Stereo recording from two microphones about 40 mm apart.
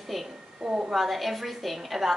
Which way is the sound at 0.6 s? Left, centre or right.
Right.